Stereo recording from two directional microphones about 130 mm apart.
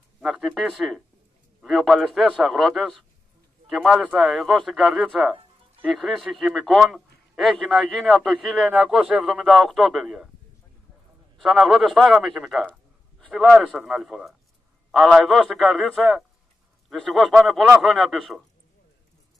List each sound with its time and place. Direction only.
0.2 s a sound: 5° right (ahead or behind)
0.5 s a man's voice: centre (ahead or behind)
11.3 s a man's voice: centre (ahead or behind)